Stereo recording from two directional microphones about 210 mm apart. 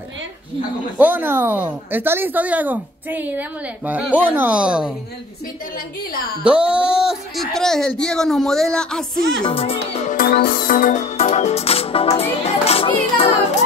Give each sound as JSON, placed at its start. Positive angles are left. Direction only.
{"t": 0.9, "sound": "speech", "side_deg": -10}
{"t": 6.4, "sound": "speech", "side_deg": -5}
{"t": 9.4, "sound": "music", "side_deg": 25}
{"t": 12.2, "sound": "a child's voice", "side_deg": 30}